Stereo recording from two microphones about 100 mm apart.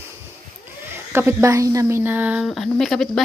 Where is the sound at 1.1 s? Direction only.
30° right (ahead or behind).